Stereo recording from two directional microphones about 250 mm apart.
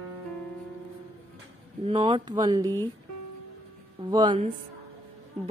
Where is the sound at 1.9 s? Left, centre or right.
Right.